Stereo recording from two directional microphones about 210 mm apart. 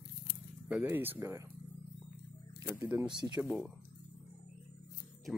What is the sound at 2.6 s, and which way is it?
Speech, 10° right (ahead or behind).